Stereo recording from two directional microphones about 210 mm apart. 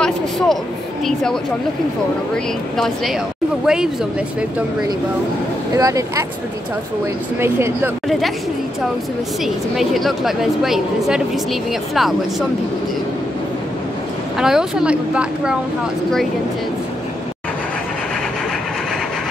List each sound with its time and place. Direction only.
0.0 s a woman's voice: 5° left (ahead or behind)
5.8 s speech: 15° right (ahead or behind)
7.3 s speech: 10° right (ahead or behind)
9.4 s a woman's voice: centre (ahead or behind)
14.4 s a woman's voice: 5° right (ahead or behind)